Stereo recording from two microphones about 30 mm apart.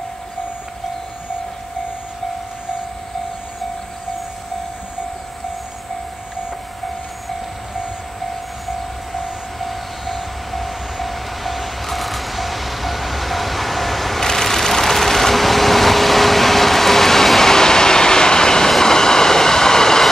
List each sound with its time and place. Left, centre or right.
8.3 s train: centre
9.6 s vehicle: centre; by 18.7 s left
18.8 s train: centre